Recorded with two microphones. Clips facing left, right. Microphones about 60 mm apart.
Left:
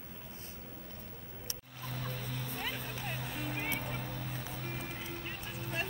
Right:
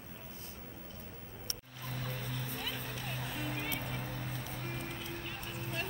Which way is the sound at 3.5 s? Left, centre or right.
Left.